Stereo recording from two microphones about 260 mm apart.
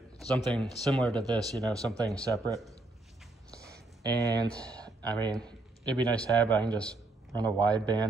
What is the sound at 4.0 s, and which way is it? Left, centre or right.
Speech, centre.